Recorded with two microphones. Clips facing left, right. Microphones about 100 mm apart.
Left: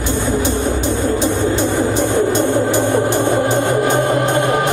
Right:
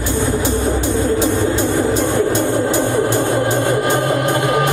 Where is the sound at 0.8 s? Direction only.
20° left (ahead or behind).